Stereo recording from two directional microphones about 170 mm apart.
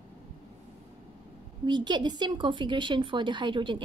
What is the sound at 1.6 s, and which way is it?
Speech, 25° right (ahead or behind).